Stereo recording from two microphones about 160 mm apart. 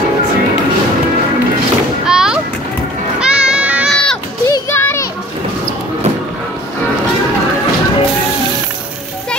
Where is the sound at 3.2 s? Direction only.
5° right (ahead or behind).